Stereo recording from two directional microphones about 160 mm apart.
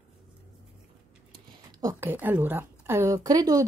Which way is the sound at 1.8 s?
15° right (ahead or behind).